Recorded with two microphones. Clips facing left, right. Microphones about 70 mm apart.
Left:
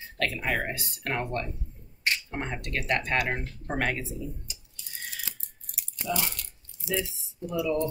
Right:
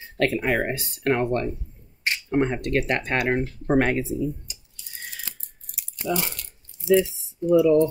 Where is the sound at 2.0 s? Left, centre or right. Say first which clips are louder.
Right 8 dB; right.